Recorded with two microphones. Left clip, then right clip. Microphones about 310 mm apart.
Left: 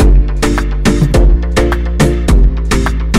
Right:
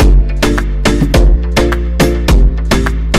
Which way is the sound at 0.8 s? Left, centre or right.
Centre.